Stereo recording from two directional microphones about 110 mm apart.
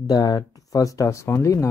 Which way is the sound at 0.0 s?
35° left (ahead or behind).